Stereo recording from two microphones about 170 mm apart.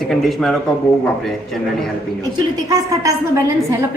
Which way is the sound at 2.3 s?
20° right (ahead or behind).